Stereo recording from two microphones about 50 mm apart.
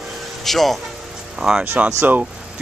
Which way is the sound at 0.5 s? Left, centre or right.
Centre.